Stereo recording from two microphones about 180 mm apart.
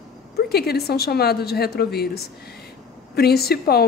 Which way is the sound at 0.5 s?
60° left (ahead or behind).